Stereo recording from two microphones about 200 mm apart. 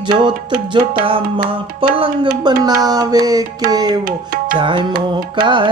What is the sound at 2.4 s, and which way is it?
Music, 20° right (ahead or behind).